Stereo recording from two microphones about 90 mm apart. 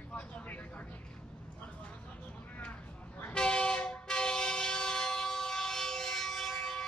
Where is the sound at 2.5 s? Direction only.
15° left (ahead or behind).